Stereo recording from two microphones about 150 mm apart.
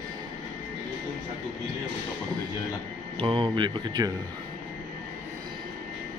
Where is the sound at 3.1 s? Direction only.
35° right (ahead or behind).